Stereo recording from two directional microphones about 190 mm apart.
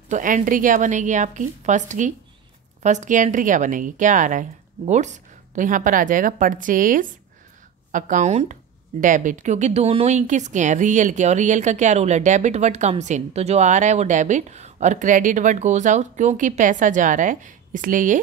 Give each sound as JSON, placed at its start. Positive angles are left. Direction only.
{"t": 0.1, "sound": "a woman's voice", "side_deg": -45}